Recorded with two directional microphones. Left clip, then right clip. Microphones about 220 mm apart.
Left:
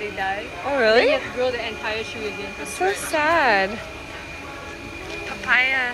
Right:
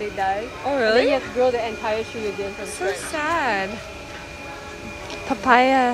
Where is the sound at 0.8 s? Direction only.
10° right (ahead or behind).